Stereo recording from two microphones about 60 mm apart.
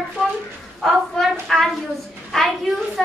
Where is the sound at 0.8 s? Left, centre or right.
Centre.